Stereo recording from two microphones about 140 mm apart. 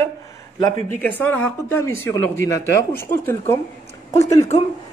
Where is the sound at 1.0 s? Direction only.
15° left (ahead or behind).